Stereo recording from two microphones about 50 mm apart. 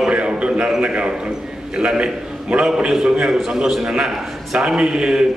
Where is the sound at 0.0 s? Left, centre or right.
Right.